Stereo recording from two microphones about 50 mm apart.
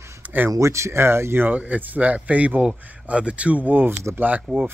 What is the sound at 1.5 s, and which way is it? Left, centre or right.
A man's voice, right.